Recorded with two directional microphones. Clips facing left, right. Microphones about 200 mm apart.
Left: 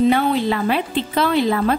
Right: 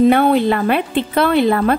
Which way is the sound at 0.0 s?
55° right (ahead or behind).